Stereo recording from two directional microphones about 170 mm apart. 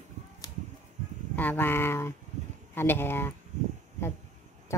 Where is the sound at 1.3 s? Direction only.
10° left (ahead or behind).